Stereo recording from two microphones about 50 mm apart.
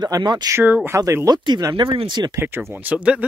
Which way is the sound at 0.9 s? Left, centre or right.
Right.